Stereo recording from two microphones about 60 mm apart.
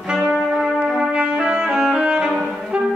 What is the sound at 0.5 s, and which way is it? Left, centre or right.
Brass instrument, centre.